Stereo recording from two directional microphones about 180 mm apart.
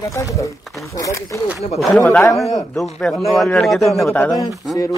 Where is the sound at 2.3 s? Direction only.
Centre (ahead or behind).